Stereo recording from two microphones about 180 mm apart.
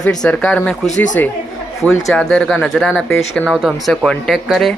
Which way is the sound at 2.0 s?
5° left (ahead or behind).